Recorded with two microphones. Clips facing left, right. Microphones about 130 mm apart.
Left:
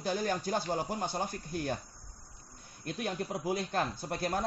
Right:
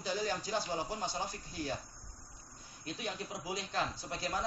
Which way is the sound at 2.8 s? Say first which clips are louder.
Left 5 dB; 55° left (ahead or behind).